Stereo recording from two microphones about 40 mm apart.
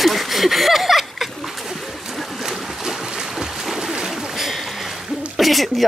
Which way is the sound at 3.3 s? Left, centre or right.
Centre.